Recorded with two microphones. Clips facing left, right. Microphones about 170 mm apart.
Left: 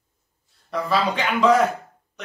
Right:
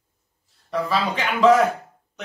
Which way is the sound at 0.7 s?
Centre (ahead or behind).